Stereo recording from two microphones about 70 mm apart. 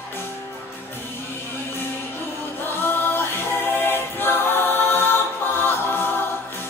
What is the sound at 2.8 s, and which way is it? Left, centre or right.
A capella, left.